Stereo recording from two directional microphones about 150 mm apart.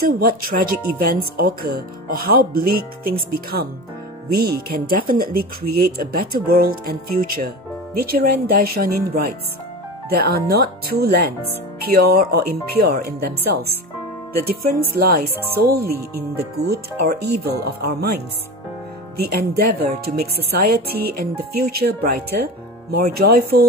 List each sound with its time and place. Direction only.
0.0 s speech: 75° right (ahead or behind)
19.1 s speech: 90° right